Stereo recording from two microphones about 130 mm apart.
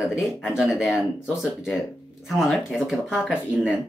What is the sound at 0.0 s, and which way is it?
Speech, centre (ahead or behind).